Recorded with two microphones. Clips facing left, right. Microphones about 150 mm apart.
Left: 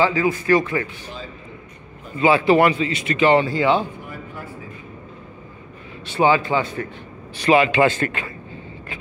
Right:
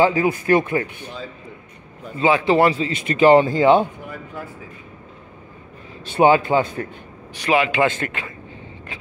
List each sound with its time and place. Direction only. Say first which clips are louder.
0.0 s speech: right 2 dB; 50° right (ahead or behind)
2.2 s speech: left 1 dB; 20° right (ahead or behind); by 3.9 s 50° right (ahead or behind)
6.1 s speech: right 3 dB; 50° right (ahead or behind)
7.3 s a man's voice: left 3 dB; 10° right (ahead or behind)